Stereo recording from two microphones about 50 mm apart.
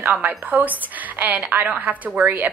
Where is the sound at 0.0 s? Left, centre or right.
Right.